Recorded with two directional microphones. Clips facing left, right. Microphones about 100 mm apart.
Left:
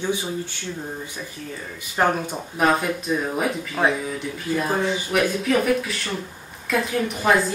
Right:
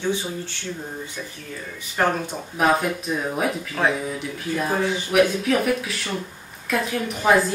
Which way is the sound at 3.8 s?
10° left (ahead or behind).